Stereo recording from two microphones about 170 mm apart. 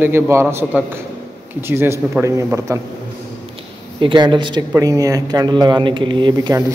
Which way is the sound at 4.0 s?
30° right (ahead or behind).